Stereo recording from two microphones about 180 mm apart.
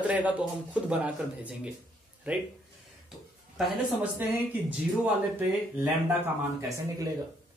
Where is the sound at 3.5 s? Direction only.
10° right (ahead or behind).